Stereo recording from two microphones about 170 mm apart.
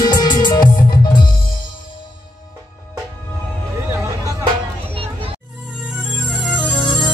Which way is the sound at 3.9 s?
15° right (ahead or behind).